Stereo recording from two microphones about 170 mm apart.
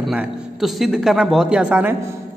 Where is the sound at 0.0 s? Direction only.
Centre (ahead or behind).